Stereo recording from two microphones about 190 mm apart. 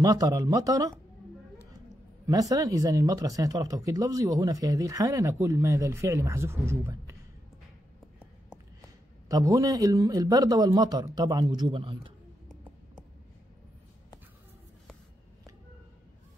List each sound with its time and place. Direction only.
0.0 s speech: 20° right (ahead or behind)
2.2 s speech: 20° right (ahead or behind)
9.3 s speech: 20° right (ahead or behind)